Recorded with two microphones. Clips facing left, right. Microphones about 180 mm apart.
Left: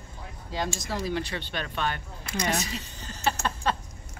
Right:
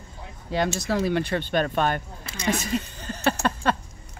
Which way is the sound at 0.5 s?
65° right (ahead or behind).